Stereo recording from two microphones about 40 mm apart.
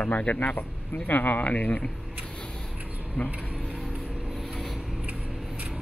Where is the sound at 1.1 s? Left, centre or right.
Left.